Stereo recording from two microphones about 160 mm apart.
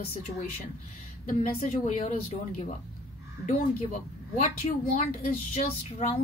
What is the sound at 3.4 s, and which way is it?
Speech, 45° left (ahead or behind).